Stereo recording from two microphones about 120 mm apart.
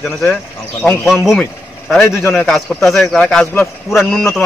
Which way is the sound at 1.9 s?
10° left (ahead or behind).